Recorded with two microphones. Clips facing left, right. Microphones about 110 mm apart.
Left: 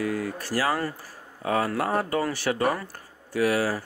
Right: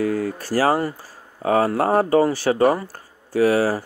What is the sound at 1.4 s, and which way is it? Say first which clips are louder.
Speech: right 7 dB; 35° right (ahead or behind).